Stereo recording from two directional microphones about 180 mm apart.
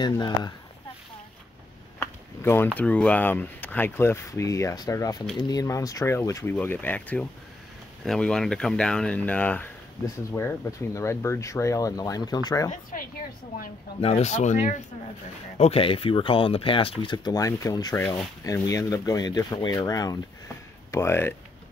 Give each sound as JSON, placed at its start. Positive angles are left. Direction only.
{"t": 0.0, "sound": "speech", "side_deg": 25}
{"t": 2.0, "sound": "speech", "side_deg": 15}
{"t": 14.0, "sound": "speech", "side_deg": 35}